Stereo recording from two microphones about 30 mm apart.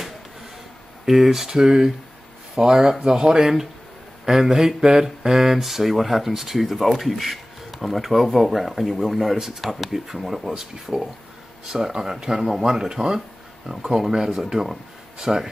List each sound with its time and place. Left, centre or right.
1.0 s speech: centre
1.6 s speech: right
15.1 s speech: right